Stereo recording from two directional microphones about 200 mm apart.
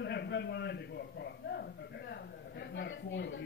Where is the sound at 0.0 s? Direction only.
60° left (ahead or behind).